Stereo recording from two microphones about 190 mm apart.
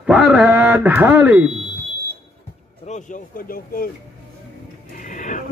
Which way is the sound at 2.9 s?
45° left (ahead or behind).